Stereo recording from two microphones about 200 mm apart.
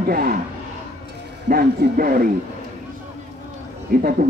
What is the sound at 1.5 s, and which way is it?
Speech, 45° right (ahead or behind).